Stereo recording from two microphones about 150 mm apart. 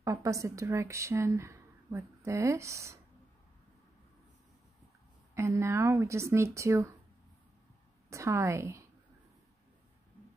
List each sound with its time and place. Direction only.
0.0 s speech: 20° right (ahead or behind)
5.3 s speech: 20° right (ahead or behind)
8.1 s speech: 20° right (ahead or behind)